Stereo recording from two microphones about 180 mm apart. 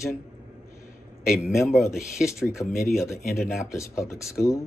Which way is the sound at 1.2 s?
Centre (ahead or behind).